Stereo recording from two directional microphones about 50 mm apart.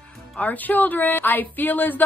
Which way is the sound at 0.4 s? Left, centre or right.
Left.